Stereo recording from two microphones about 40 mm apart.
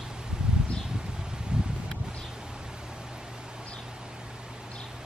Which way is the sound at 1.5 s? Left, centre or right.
Right.